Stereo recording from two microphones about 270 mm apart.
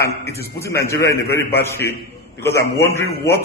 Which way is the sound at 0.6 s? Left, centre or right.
Centre.